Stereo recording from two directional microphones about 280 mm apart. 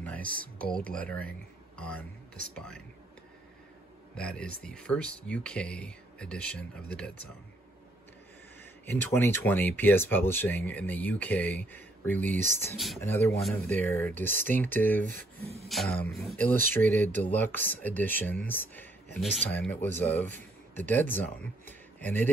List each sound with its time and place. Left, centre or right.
0.7 s speech: centre
4.2 s speech: centre
8.8 s speech: centre
15.4 s beatboxing: right
15.7 s speech: centre